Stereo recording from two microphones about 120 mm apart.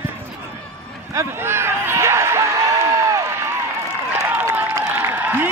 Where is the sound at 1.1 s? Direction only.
20° right (ahead or behind).